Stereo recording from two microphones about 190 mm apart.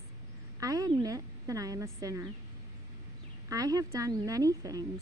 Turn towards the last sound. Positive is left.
turn(degrees=-20)  # may be behind; listen again after turning